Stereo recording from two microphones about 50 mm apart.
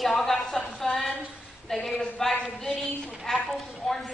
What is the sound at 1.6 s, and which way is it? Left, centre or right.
A woman's voice, centre.